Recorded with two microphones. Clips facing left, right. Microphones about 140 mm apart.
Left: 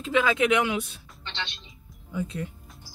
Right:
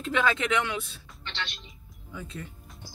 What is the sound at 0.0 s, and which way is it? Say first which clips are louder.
Speech: left 4 dB; 5° left (ahead or behind).